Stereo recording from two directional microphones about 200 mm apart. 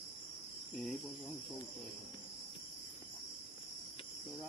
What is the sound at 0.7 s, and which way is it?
Cricket, centre (ahead or behind).